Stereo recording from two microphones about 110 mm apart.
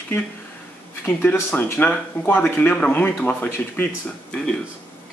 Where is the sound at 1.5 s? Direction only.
15° left (ahead or behind).